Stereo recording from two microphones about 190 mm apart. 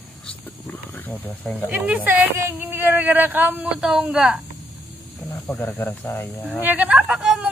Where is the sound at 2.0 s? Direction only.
10° right (ahead or behind).